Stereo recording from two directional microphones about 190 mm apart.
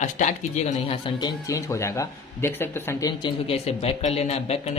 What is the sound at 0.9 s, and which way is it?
Speech, 25° left (ahead or behind).